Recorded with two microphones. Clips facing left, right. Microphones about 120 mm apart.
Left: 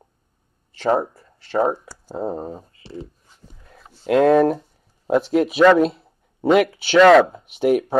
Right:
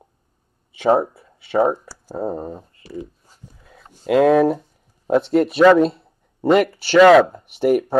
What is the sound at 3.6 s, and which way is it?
Speech, centre (ahead or behind).